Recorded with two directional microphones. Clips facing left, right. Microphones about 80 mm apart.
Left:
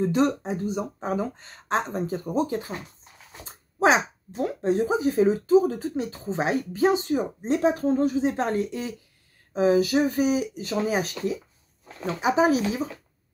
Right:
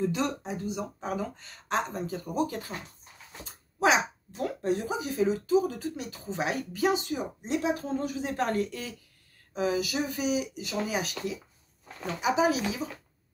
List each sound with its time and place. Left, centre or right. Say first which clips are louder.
0.0 s speech: left 7 dB; left
3.4 s dog: left 4 dB; left
4.3 s speech: left 6 dB; left